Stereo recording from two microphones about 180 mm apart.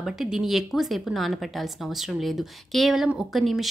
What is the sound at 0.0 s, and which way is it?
A woman's voice, centre (ahead or behind).